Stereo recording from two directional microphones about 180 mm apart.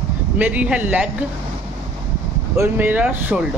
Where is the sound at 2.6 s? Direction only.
10° right (ahead or behind).